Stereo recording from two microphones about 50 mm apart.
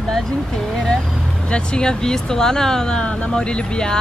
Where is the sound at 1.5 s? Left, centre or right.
Centre.